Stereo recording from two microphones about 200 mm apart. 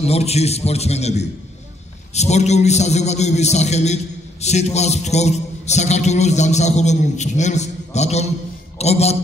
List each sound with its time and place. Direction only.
0.0 s a man's voice: 30° left (ahead or behind)